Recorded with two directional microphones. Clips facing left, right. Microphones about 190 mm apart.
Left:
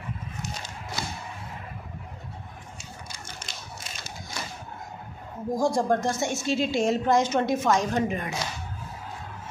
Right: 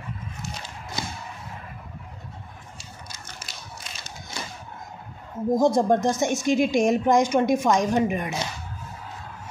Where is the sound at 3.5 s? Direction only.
5° right (ahead or behind).